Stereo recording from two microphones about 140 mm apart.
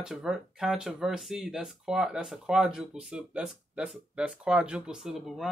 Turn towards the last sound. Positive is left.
turn(degrees=-5)  # may be behind; listen again after turning